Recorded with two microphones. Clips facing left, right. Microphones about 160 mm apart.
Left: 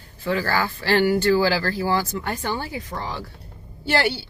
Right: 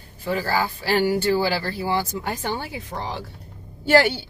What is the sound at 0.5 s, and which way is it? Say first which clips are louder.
Speech: left 1 dB; 10° right (ahead or behind).